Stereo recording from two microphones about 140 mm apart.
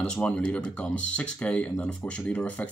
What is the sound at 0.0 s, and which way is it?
Speech, 5° left (ahead or behind).